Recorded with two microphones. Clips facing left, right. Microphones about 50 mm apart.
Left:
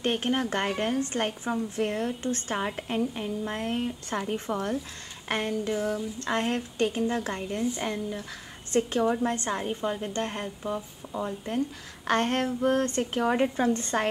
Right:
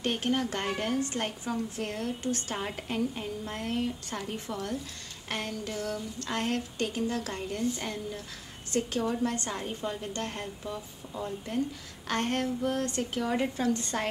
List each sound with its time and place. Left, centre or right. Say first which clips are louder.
0.0 s a woman's voice: left 2 dB; left